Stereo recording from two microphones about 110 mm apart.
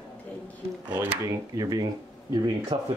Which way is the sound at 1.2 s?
30° right (ahead or behind).